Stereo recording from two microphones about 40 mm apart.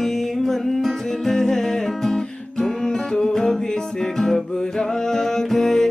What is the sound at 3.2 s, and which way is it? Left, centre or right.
Music, centre.